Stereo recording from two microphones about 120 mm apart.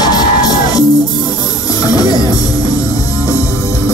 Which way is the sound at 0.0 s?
35° left (ahead or behind).